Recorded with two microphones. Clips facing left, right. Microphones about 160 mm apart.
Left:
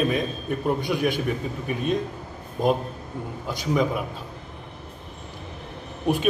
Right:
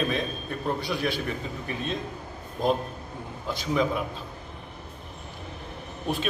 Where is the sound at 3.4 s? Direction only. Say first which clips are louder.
Left 2 dB; 10° left (ahead or behind).